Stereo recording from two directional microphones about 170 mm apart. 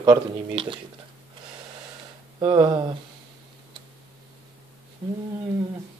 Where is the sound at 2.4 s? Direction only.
25° right (ahead or behind).